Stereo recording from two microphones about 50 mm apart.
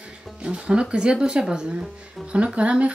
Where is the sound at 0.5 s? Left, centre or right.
Centre.